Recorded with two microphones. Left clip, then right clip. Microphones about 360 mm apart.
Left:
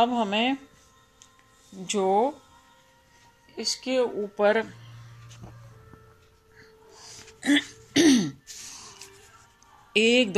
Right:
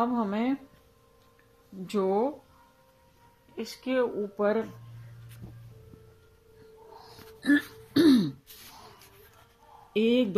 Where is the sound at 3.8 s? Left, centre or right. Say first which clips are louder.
Left 1 dB; centre.